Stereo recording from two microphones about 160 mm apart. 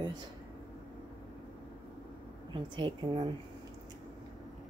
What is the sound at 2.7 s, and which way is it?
Speech, 30° right (ahead or behind).